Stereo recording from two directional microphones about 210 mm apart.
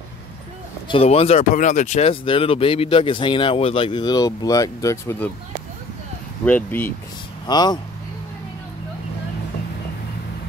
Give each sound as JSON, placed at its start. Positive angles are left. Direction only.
{"t": 0.8, "sound": "speech", "side_deg": 25}
{"t": 6.4, "sound": "speech", "side_deg": 10}
{"t": 7.4, "sound": "speech", "side_deg": 20}